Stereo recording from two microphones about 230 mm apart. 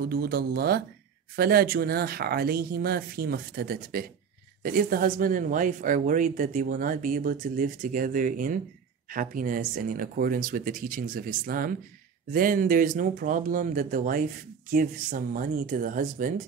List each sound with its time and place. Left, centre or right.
0.1 s a woman's voice: right